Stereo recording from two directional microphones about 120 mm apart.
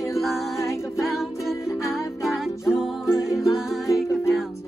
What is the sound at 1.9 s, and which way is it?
Music, 5° right (ahead or behind).